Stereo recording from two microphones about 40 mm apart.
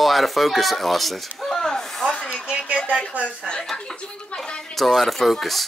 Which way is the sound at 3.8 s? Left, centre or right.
Left.